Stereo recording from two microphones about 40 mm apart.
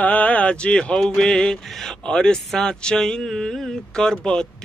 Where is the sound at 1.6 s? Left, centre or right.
Centre.